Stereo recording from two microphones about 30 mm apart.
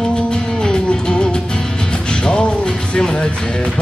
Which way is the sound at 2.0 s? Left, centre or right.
Left.